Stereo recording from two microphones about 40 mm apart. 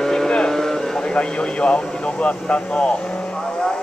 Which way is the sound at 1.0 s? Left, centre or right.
Left.